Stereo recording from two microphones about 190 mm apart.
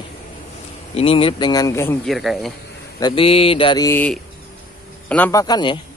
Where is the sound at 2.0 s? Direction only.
Centre (ahead or behind).